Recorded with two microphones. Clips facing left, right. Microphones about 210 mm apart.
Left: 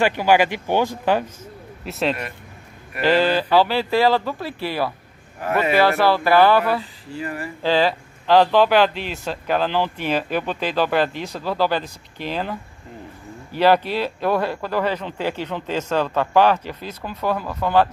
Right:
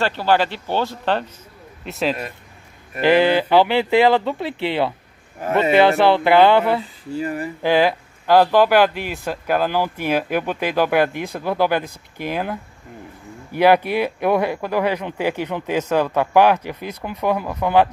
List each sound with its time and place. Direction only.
0.0 s a man's voice: 15° left (ahead or behind)
3.0 s speech: 15° right (ahead or behind)